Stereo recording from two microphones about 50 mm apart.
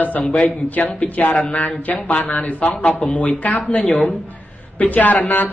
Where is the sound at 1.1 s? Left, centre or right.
Left.